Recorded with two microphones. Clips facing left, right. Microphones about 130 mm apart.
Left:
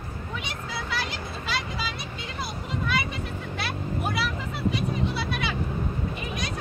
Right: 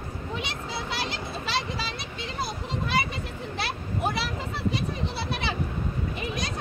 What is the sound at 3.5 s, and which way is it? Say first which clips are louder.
Vehicle: left 1 dB; 30° right (ahead or behind).